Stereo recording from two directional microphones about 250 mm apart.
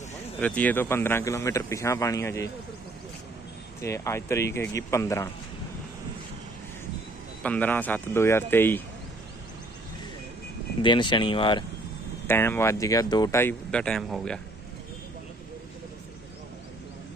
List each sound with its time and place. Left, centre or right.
0.4 s speech: centre
3.8 s speech: centre
7.4 s speech: centre
10.8 s speech: centre